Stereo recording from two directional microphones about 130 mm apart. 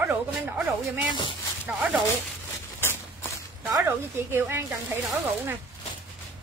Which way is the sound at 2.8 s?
20° left (ahead or behind).